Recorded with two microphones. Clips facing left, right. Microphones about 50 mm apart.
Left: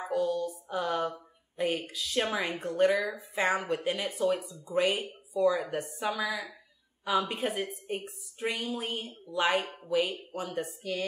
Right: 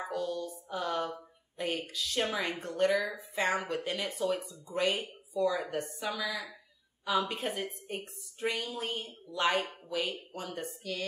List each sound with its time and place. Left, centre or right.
0.1 s a woman's voice: centre
5.9 s a woman's voice: centre